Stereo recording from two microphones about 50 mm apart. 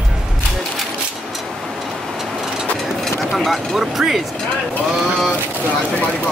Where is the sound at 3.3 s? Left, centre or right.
Centre.